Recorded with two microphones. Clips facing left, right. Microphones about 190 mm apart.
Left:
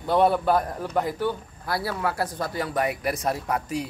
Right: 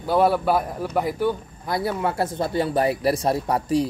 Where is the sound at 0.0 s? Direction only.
5° right (ahead or behind).